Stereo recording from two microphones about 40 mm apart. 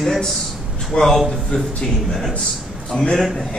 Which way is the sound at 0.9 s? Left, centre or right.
Centre.